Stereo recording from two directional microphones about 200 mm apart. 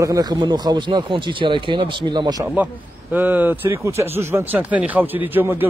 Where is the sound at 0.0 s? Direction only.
20° right (ahead or behind).